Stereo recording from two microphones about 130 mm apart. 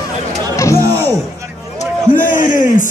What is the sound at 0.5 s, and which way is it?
Chatter, 25° left (ahead or behind).